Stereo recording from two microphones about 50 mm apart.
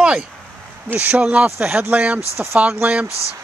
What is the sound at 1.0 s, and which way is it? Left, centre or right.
Speech, right.